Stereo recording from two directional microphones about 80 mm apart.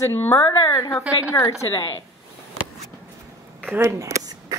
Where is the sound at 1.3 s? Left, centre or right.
Left.